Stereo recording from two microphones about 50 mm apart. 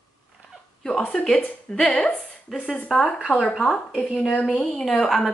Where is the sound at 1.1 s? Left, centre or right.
Centre.